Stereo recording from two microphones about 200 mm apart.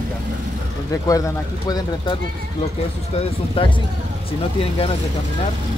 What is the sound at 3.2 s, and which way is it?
Speech, 25° left (ahead or behind).